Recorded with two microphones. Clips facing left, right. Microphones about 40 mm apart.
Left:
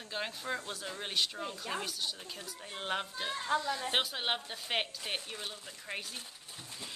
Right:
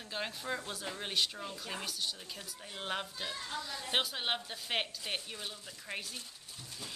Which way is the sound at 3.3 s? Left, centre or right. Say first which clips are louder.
Left 9 dB; left.